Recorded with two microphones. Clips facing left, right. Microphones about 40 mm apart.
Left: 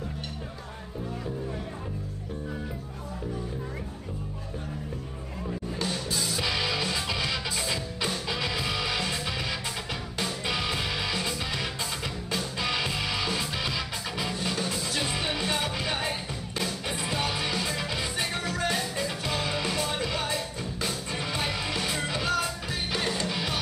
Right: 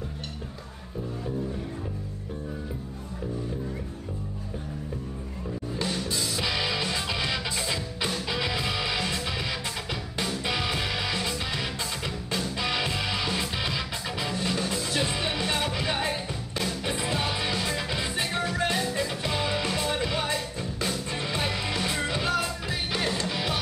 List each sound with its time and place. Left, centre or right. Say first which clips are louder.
5.8 s music: right 2 dB; centre
19.8 s music: right 2 dB; centre
20.3 s music: right 1 dB; centre